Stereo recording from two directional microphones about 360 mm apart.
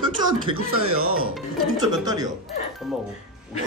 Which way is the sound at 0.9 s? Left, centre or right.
Right.